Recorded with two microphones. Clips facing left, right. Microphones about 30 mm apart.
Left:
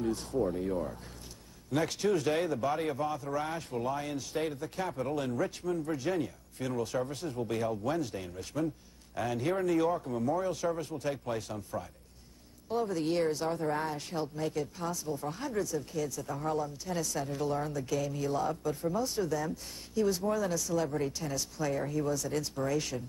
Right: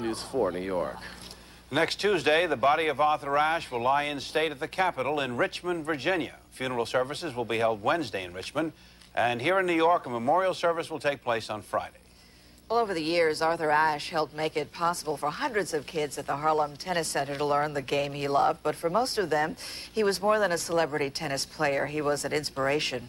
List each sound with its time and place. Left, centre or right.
0.0 s speech: right